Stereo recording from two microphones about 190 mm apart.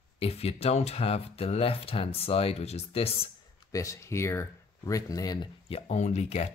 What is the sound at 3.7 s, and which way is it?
Speech, 15° left (ahead or behind).